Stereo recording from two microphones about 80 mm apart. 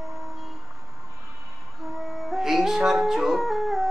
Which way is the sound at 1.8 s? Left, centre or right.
Centre.